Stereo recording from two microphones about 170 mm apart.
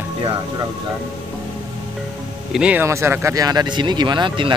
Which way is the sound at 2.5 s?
10° right (ahead or behind).